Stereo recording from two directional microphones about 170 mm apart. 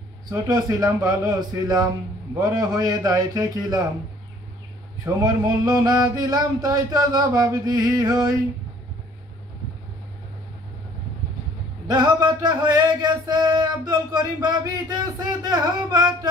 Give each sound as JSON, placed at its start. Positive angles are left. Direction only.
{"t": 0.3, "sound": "music", "side_deg": -20}
{"t": 5.0, "sound": "music", "side_deg": -20}
{"t": 11.9, "sound": "music", "side_deg": -25}